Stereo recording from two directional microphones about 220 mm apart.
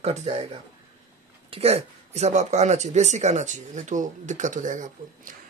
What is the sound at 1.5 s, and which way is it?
Speech, 25° right (ahead or behind).